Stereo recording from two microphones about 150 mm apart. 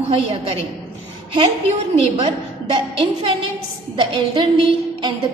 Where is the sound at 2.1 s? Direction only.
45° right (ahead or behind).